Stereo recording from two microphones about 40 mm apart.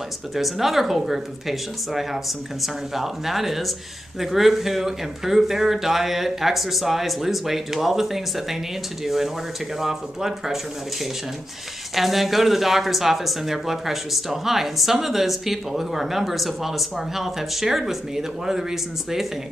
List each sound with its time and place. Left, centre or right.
0.4 s speech: centre
11.9 s speech: centre